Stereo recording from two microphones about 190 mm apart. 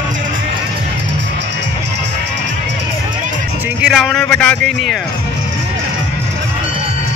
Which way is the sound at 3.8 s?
Centre (ahead or behind).